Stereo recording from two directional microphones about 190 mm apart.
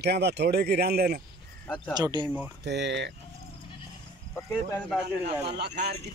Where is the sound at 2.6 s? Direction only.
65° right (ahead or behind).